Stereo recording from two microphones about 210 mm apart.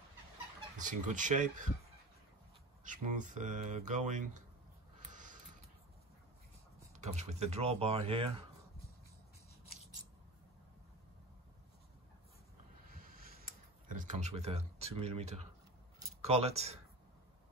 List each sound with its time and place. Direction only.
0.8 s speech: 35° right (ahead or behind)
2.8 s speech: 35° right (ahead or behind)
5.1 s a sound: 35° right (ahead or behind)
6.9 s speech: 35° right (ahead or behind)
12.9 s tick-tock: 45° right (ahead or behind)
16.2 s speech: 30° right (ahead or behind)